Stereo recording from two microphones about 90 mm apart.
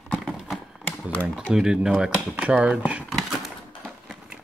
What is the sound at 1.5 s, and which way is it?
Speech, 5° right (ahead or behind).